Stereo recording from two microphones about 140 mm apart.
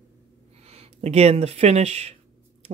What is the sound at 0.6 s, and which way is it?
Speech, 45° right (ahead or behind).